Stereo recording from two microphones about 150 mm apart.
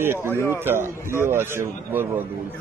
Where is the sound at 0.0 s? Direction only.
15° right (ahead or behind).